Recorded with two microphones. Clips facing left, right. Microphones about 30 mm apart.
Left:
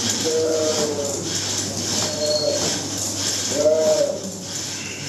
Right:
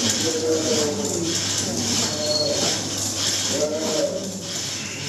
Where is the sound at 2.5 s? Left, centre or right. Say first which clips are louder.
Even; centre.